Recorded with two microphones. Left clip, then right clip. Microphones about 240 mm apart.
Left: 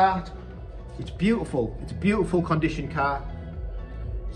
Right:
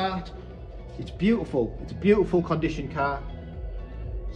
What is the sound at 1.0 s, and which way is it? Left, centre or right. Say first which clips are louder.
Speech: even; left.